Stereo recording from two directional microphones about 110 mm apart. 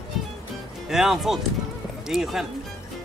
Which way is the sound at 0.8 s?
5° right (ahead or behind).